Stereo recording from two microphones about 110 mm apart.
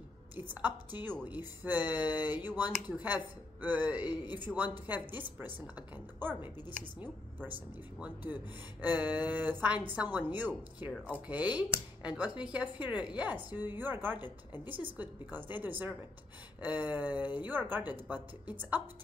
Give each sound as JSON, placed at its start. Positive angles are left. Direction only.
{"t": 0.4, "sound": "a woman's voice", "side_deg": -15}
{"t": 8.0, "sound": "a woman's voice", "side_deg": -15}